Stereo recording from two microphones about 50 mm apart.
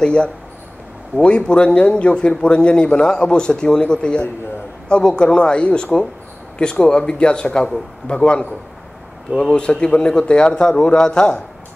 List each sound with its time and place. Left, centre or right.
0.0 s a man's voice: left